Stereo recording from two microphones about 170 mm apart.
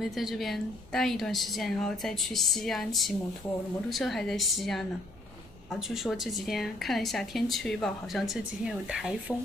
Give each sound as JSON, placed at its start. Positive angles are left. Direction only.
{"t": 0.0, "sound": "speech", "side_deg": 0}